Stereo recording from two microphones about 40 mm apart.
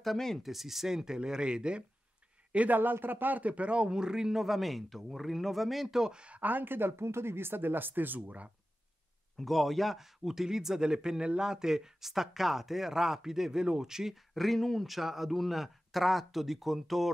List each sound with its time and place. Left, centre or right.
0.4 s a man's voice: centre; by 1.9 s right
2.7 s a man's voice: right; by 5.9 s centre
5.9 s a man's voice: centre
6.1 s speech: right
6.4 s speech: right
9.4 s a man's voice: centre
14.1 s speech: centre
14.9 s speech: centre